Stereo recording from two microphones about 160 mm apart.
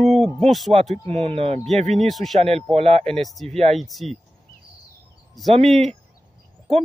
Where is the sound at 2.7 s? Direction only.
40° right (ahead or behind).